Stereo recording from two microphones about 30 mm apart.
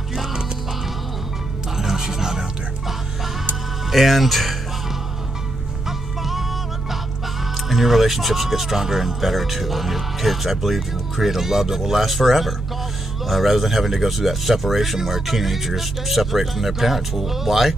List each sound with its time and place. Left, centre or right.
1.8 s music: centre
3.9 s speech: centre
5.9 s music: centre
7.7 s speech: centre
9.2 s speech: centre